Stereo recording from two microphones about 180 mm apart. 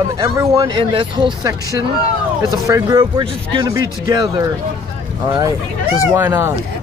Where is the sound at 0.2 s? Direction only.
20° right (ahead or behind).